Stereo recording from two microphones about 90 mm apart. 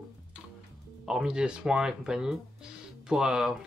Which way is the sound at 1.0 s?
5° right (ahead or behind).